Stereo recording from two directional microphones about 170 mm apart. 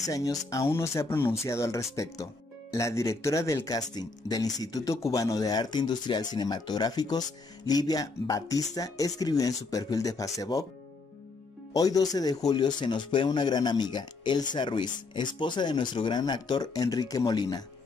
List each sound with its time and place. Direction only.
0.1 s speech: 20° left (ahead or behind)
11.7 s speech: 20° left (ahead or behind)